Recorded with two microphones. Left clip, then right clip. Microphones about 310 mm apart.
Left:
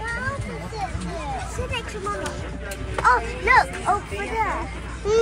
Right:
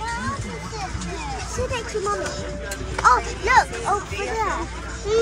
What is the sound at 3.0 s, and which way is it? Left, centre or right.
Speech, right.